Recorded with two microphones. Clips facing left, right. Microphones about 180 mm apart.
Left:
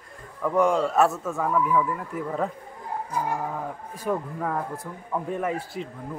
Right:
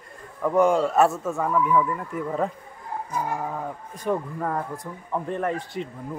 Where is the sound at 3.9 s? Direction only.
Centre (ahead or behind).